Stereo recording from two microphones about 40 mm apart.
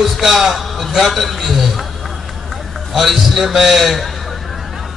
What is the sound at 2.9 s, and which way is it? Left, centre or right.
A man's voice, centre.